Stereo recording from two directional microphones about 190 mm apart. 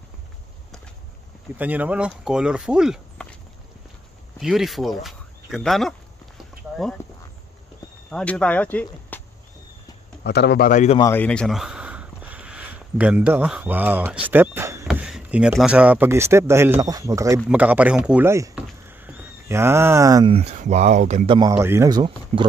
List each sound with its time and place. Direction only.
1.6 s speech: 10° right (ahead or behind)
4.4 s speech: centre (ahead or behind)
8.1 s speech: 5° left (ahead or behind)
10.2 s a man's voice: 60° left (ahead or behind)
10.7 s speech: 40° left (ahead or behind)
11.0 s speech: 10° left (ahead or behind); by 14.9 s 15° right (ahead or behind)
14.9 s speech: 5° right (ahead or behind); by 20.3 s 20° right (ahead or behind)
20.3 s speech: 35° right (ahead or behind)
21.3 s speech: 20° right (ahead or behind)